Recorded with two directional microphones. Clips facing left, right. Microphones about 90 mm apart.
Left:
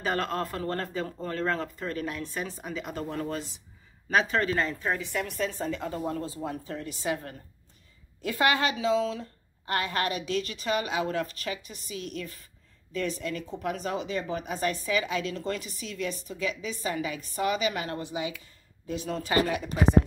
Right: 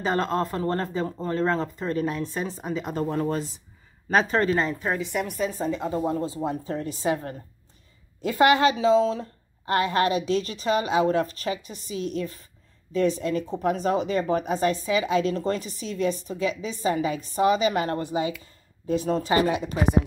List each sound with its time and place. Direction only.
0.0 s speech: 25° right (ahead or behind)
4.6 s speech: 15° right (ahead or behind)